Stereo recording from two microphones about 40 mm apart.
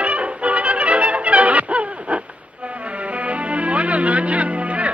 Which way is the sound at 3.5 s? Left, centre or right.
Right.